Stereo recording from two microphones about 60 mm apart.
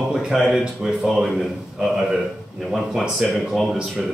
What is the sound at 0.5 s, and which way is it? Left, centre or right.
Speech, centre.